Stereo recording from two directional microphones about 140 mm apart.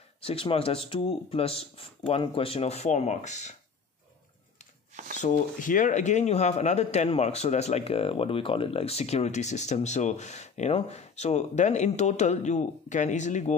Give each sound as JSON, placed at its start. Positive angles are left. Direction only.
{"t": 0.2, "sound": "speech", "side_deg": 45}
{"t": 5.1, "sound": "speech", "side_deg": 65}